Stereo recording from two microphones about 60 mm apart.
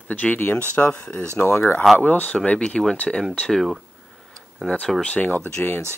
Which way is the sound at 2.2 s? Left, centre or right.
Centre.